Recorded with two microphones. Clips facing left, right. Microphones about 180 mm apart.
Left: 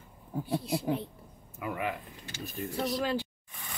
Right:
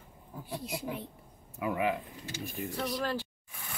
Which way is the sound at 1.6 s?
20° right (ahead or behind).